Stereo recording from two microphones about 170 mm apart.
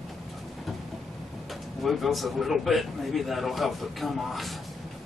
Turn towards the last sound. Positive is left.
turn(degrees=0)  # may be behind; listen again after turning